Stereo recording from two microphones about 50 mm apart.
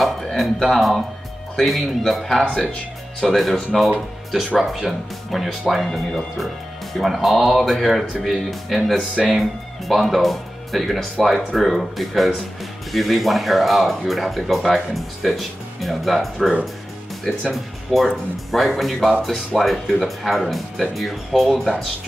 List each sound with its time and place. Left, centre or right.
0.0 s speech: centre
2.4 s speech: left
3.2 s speech: centre
4.6 s speech: centre